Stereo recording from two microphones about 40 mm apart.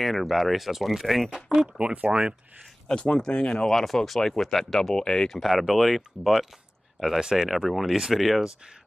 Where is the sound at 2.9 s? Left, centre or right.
Centre.